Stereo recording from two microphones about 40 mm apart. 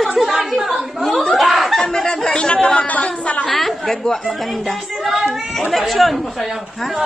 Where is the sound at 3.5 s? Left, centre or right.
Centre.